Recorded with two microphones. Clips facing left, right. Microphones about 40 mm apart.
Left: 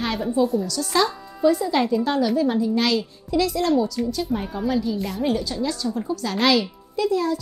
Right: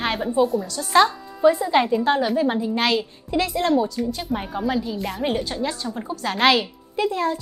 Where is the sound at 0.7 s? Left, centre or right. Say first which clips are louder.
Right 4 dB; right.